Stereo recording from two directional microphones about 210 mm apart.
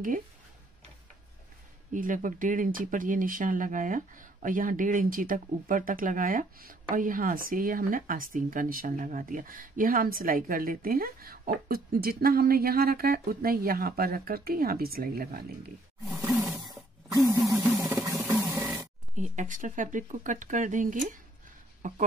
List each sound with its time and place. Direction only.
1.9 s speech: 40° right (ahead or behind)
16.0 s roar: centre (ahead or behind)
17.1 s a sound: 15° right (ahead or behind)
18.0 s music: 15° right (ahead or behind)
18.4 s a sound: 15° right (ahead or behind)
19.1 s speech: 35° right (ahead or behind)